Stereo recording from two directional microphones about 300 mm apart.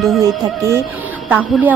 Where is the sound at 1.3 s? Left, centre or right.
Centre.